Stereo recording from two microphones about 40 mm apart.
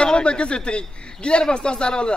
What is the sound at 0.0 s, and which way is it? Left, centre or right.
A man's voice, left.